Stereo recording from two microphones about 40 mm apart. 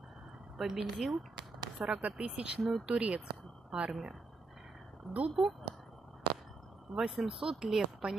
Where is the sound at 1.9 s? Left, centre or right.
Right.